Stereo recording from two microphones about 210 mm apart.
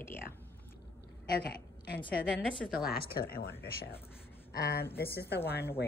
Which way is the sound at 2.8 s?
45° left (ahead or behind).